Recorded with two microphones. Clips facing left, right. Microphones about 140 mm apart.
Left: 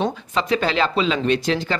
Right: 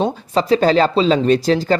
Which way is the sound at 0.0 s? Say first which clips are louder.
Right 5 dB; 35° right (ahead or behind).